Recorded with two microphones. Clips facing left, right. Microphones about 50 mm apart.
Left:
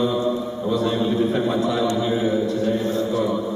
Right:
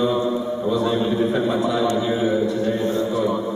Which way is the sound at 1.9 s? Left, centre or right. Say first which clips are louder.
Right 1 dB; centre.